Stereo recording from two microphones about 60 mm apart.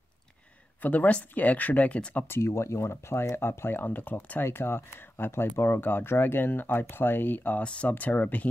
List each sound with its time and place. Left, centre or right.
0.8 s speech: left
2.2 s speech: left
4.5 s speech: left